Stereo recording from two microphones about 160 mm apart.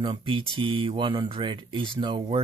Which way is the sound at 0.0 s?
30° right (ahead or behind).